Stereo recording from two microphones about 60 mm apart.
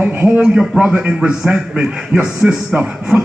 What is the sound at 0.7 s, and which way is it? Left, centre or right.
A man's voice, centre.